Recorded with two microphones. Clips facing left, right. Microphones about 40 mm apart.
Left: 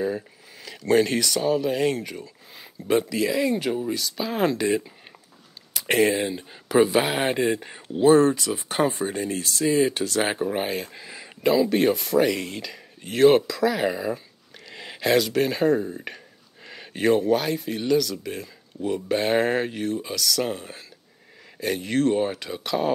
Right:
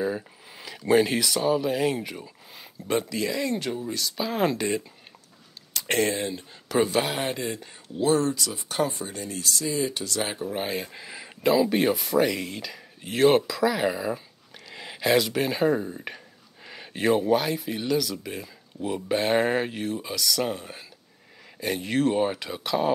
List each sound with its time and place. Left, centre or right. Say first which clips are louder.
0.7 s speech: left 1 dB; centre
2.9 s speech: left 4 dB; centre
4.0 s speech: right 3 dB; centre; by 10.6 s left
10.7 s speech: left 1 dB; centre